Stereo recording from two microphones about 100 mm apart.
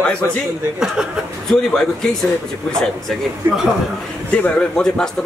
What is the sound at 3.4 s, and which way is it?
Speech, 25° right (ahead or behind).